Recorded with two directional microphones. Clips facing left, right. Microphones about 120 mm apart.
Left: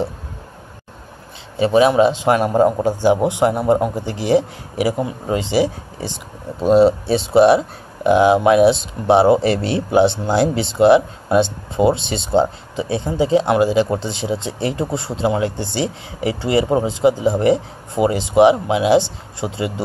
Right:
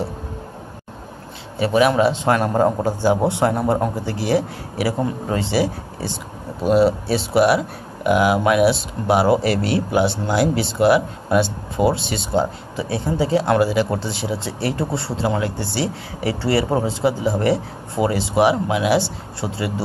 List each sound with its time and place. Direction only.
1.6 s speech: 25° left (ahead or behind)